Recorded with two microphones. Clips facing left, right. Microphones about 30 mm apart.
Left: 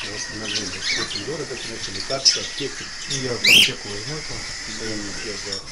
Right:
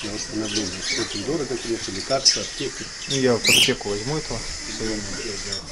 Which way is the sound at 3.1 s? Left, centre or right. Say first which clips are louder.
Right 7 dB; centre.